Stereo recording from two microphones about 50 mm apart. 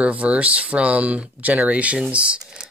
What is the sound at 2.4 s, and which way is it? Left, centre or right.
Speech, centre.